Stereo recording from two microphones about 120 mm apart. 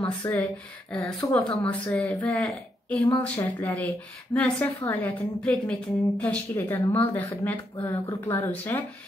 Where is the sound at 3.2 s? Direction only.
10° left (ahead or behind).